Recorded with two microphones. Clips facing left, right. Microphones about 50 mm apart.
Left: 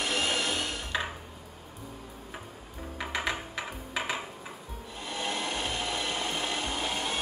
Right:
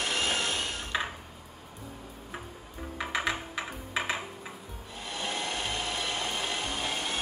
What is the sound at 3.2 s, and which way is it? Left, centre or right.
Typing, centre.